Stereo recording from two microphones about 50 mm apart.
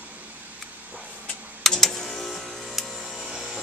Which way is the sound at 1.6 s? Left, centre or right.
Centre.